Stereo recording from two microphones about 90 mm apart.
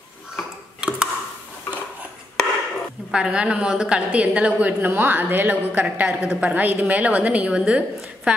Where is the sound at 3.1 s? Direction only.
10° right (ahead or behind).